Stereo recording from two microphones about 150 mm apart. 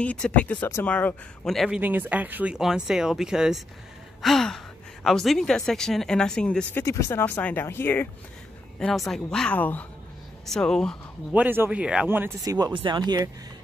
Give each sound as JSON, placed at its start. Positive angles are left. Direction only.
{"t": 0.0, "sound": "speech", "side_deg": 10}
{"t": 1.8, "sound": "speech", "side_deg": -10}
{"t": 6.8, "sound": "speech", "side_deg": 20}
{"t": 8.7, "sound": "speech", "side_deg": 0}
{"t": 11.3, "sound": "a man's voice", "side_deg": -15}
{"t": 12.4, "sound": "speech", "side_deg": -25}